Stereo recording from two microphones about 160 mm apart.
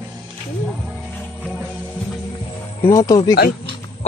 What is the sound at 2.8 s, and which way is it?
Speech, 20° left (ahead or behind).